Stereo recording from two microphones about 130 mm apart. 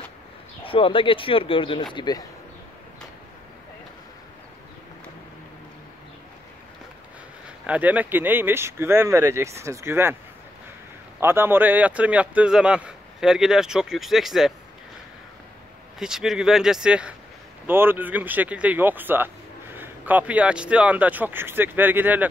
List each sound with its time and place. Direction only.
0.7 s speech: 40° left (ahead or behind)
7.4 s speech: 10° right (ahead or behind)
11.1 s speech: 20° right (ahead or behind); by 14.5 s centre (ahead or behind)
16.0 s speech: 5° right (ahead or behind)